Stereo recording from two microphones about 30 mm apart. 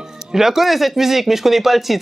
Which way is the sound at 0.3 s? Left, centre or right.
Centre.